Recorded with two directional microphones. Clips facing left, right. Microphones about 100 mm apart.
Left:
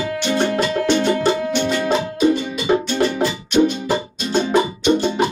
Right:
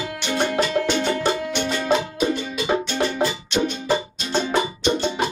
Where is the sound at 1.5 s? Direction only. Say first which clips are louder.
Left 5 dB; centre (ahead or behind).